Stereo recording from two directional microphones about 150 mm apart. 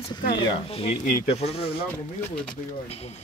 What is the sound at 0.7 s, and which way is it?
Speech, 40° left (ahead or behind).